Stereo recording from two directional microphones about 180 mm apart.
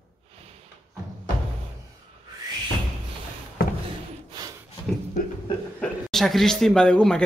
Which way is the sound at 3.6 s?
55° left (ahead or behind).